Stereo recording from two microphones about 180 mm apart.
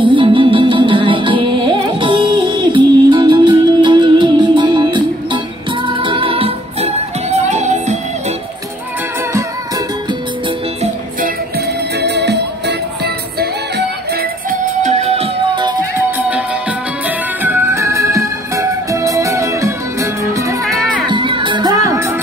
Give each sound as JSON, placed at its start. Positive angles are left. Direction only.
{"t": 0.0, "sound": "music", "side_deg": -25}
{"t": 10.8, "sound": "music", "side_deg": -50}
{"t": 14.5, "sound": "music", "side_deg": -40}
{"t": 17.4, "sound": "music", "side_deg": -15}
{"t": 20.6, "sound": "music", "side_deg": 0}
{"t": 21.1, "sound": "music", "side_deg": -25}